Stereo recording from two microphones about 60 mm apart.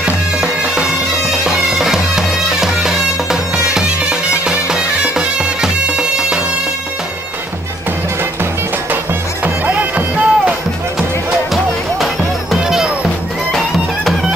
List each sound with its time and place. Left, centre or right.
0.0 s music: centre
1.4 s bagpipes: centre
9.4 s music: right
11.5 s music: centre